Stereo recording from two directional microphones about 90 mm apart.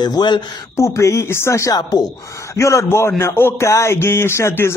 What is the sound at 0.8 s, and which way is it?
A man's voice, 35° left (ahead or behind).